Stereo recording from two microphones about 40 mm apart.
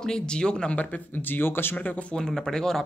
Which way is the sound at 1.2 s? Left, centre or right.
Left.